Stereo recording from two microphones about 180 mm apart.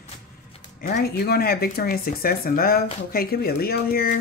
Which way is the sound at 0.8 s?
55° left (ahead or behind).